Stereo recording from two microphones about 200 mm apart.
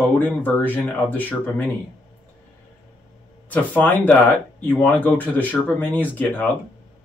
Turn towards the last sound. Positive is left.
turn(degrees=10)  # may be behind; listen again after turning